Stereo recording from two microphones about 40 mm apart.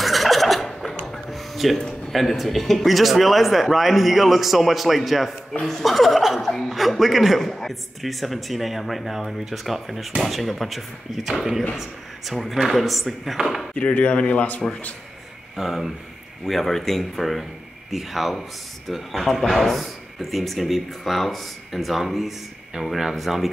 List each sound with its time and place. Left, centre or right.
0.0 s a sound: centre
2.1 s a man's voice: centre
5.5 s a man's voice: centre
13.7 s speech: left
15.5 s a man's voice: centre
16.4 s a man's voice: centre